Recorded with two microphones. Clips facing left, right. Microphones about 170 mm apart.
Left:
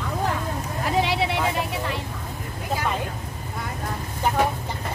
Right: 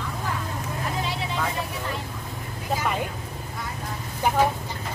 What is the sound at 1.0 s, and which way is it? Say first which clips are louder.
Vehicle: left 6 dB; 80° left.